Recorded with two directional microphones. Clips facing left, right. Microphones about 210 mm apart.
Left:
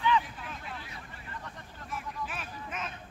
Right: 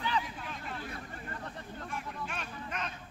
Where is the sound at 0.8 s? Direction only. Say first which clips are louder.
Right 5 dB; 50° right (ahead or behind).